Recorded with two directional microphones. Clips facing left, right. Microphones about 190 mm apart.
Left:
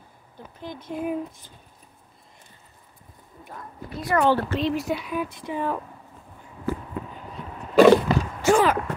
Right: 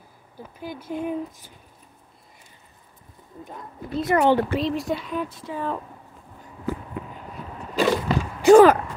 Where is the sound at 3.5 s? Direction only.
20° right (ahead or behind).